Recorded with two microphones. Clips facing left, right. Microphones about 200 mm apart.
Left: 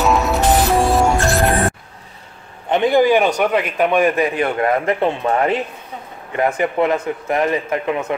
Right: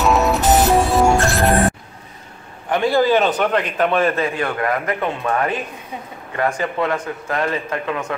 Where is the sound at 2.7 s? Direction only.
20° left (ahead or behind).